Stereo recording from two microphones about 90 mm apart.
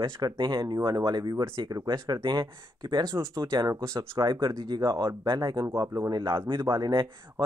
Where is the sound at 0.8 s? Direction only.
50° right (ahead or behind).